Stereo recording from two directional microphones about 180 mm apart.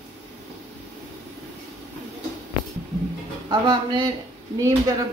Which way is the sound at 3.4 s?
25° right (ahead or behind).